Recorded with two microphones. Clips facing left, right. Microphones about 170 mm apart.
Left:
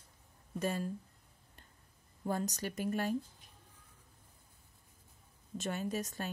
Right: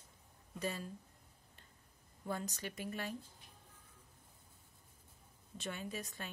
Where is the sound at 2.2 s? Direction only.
40° left (ahead or behind).